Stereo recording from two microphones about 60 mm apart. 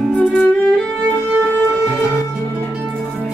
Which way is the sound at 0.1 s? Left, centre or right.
Left.